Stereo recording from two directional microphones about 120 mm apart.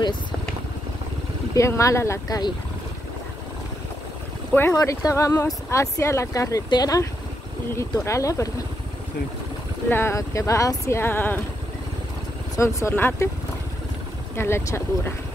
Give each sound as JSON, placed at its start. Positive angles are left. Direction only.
{"t": 1.5, "sound": "speech", "side_deg": 25}
{"t": 4.5, "sound": "speech", "side_deg": 20}
{"t": 9.8, "sound": "speech", "side_deg": 20}
{"t": 12.5, "sound": "speech", "side_deg": 25}
{"t": 14.3, "sound": "speech", "side_deg": 20}